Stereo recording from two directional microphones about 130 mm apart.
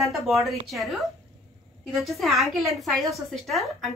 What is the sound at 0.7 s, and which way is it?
A woman's voice, centre (ahead or behind).